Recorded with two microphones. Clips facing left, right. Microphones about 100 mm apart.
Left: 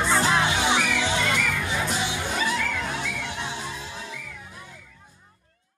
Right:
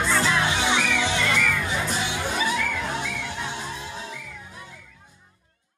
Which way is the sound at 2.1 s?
10° right (ahead or behind).